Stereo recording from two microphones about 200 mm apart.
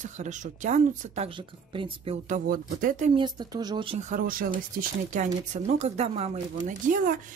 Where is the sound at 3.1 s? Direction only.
20° right (ahead or behind); by 7.2 s 40° right (ahead or behind).